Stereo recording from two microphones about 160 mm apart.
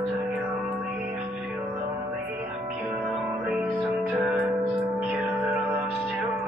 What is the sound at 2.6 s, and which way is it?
Music, 5° right (ahead or behind).